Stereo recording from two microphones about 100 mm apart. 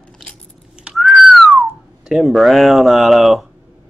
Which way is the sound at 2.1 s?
Centre (ahead or behind).